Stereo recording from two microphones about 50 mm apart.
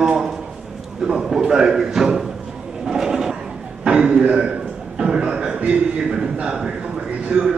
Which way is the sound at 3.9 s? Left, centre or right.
Centre.